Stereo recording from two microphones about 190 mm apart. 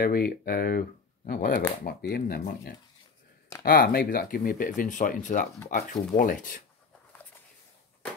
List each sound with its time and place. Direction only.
0.0 s speech: 50° left (ahead or behind)